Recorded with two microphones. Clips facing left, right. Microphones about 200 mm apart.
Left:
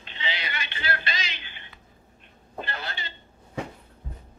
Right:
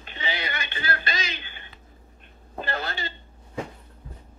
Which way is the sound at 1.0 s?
45° right (ahead or behind).